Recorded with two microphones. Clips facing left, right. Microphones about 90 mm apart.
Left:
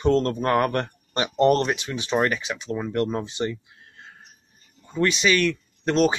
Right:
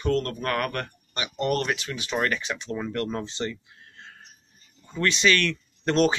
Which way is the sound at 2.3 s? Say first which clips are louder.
Left 2 dB; 5° left (ahead or behind).